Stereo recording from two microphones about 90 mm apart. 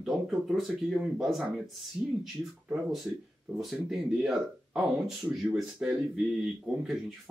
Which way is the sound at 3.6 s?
Centre (ahead or behind).